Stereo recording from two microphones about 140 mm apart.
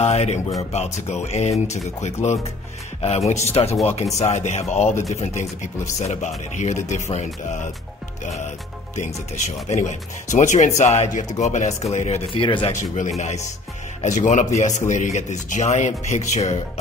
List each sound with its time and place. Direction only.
0.0 s a man's voice: 50° left (ahead or behind)
9.7 s a man's voice: 55° left (ahead or behind); by 12.7 s 35° left (ahead or behind)
14.0 s a man's voice: 60° left (ahead or behind)